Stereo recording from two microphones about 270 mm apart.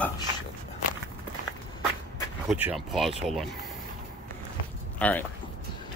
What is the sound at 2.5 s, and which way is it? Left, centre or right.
Speech, centre.